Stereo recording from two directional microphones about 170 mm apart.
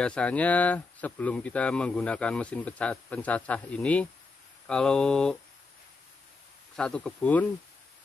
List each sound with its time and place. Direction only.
0.0 s speech: 5° left (ahead or behind)
4.6 s mantra: 5° left (ahead or behind)
6.8 s mantra: 5° left (ahead or behind)